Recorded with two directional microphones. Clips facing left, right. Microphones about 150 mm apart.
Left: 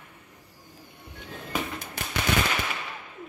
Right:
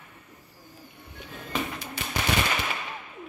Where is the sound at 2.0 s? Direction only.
50° left (ahead or behind).